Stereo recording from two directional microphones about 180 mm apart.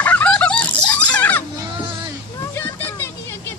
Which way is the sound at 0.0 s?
10° left (ahead or behind).